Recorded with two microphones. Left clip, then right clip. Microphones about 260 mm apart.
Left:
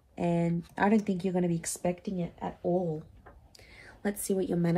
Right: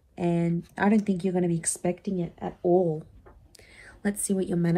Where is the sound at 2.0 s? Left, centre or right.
Right.